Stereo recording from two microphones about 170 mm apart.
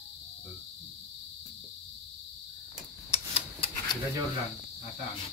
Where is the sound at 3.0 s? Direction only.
35° left (ahead or behind).